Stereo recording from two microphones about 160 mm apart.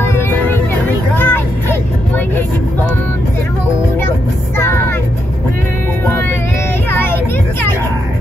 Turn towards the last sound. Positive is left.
turn(degrees=15)  # may be behind; listen again after turning